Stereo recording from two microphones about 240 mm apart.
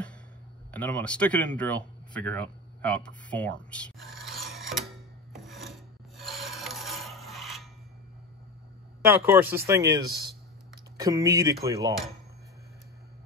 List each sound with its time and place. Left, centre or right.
0.7 s speech: centre
3.7 s a sound: centre
5.3 s filing: centre
9.1 s speech: centre